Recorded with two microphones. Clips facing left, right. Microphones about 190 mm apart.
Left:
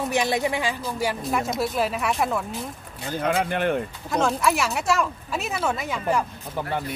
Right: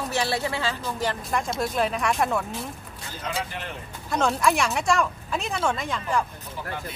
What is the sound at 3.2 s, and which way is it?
Speech, 55° left (ahead or behind).